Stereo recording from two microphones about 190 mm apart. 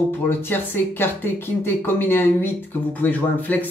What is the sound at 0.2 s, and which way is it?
Speech, 10° left (ahead or behind).